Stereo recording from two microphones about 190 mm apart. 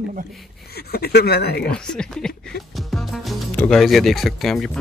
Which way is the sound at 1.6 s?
5° left (ahead or behind).